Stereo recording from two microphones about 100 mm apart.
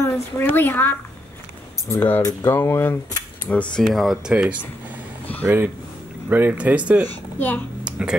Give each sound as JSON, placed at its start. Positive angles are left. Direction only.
{"t": 0.0, "sound": "a woman's voice", "side_deg": 20}
{"t": 3.7, "sound": "speech", "side_deg": 5}
{"t": 4.3, "sound": "speech", "side_deg": -10}
{"t": 5.4, "sound": "speech", "side_deg": -20}
{"t": 7.1, "sound": "speech", "side_deg": 20}
{"t": 7.8, "sound": "a sound", "side_deg": -10}